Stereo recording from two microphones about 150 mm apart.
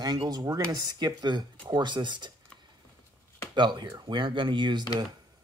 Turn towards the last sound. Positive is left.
turn(degrees=-30)  # may be behind; listen again after turning